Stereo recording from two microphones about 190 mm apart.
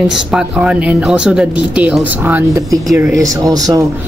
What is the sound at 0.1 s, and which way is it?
Speech, 5° right (ahead or behind).